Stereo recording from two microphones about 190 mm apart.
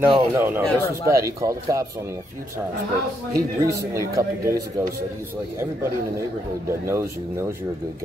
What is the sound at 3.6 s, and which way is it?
Speech, 15° right (ahead or behind).